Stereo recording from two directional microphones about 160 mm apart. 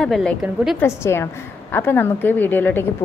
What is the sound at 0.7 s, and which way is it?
A woman's voice, 15° left (ahead or behind).